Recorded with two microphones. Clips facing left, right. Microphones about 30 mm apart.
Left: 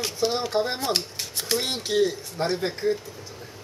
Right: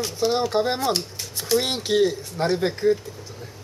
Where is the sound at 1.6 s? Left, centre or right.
Centre.